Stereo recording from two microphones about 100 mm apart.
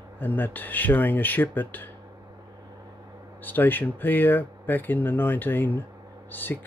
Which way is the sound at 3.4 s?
20° left (ahead or behind).